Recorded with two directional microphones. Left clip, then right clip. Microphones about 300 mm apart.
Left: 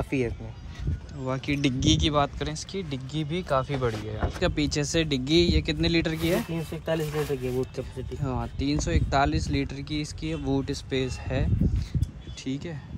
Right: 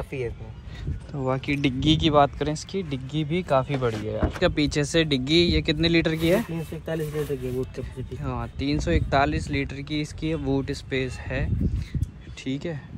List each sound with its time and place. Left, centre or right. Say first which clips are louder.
0.1 s speech: left 3 dB; left
1.2 s speech: right 3 dB; centre
7.7 s speech: left 1 dB; centre